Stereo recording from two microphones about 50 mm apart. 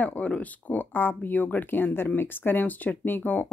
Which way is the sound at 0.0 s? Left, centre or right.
Left.